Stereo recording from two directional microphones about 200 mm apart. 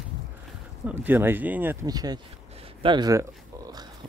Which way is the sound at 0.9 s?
10° right (ahead or behind).